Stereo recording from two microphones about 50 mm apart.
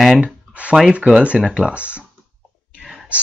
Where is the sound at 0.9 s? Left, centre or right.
Right.